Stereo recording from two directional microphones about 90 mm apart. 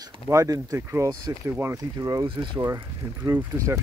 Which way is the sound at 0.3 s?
40° right (ahead or behind).